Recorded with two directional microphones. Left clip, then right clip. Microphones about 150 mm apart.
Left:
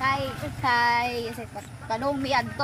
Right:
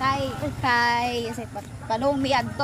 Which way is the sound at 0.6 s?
15° right (ahead or behind).